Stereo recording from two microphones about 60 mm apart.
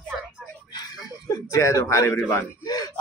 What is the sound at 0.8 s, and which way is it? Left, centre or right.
Speech, left.